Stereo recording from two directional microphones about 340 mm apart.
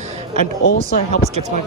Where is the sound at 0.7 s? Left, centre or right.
Left.